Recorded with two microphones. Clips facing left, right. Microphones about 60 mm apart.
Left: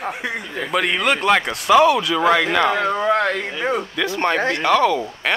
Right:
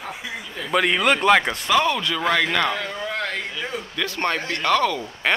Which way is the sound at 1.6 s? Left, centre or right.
Centre.